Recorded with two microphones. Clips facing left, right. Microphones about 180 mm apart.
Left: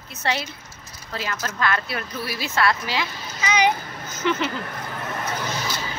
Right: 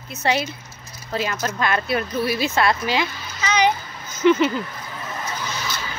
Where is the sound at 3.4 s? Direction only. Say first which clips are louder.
Right 1 dB; 10° left (ahead or behind).